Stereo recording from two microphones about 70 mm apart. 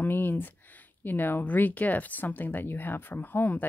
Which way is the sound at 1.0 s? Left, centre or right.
Left.